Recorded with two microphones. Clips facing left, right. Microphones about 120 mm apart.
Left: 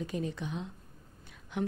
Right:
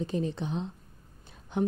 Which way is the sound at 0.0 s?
30° right (ahead or behind).